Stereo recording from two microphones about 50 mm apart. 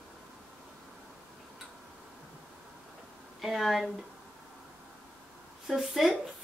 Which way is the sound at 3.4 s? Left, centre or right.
Centre.